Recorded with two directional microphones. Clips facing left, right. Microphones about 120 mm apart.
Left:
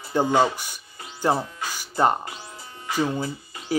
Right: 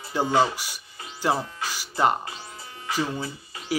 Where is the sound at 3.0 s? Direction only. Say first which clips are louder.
Left 4 dB; 30° left (ahead or behind).